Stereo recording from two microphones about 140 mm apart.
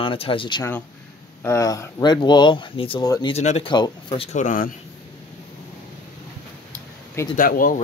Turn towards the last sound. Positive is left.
turn(degrees=80)